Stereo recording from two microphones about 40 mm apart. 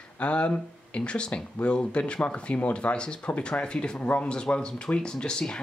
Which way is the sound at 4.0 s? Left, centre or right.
Left.